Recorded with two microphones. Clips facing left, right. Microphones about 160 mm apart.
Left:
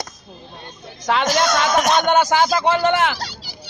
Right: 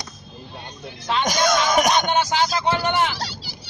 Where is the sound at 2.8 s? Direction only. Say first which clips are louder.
Left 4 dB; 90° left.